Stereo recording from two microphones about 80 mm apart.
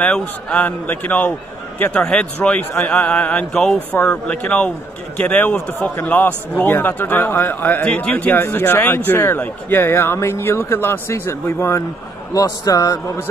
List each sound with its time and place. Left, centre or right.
0.0 s a man's voice: centre
3.5 s a man's voice: centre; by 11.8 s left
12.4 s a man's voice: left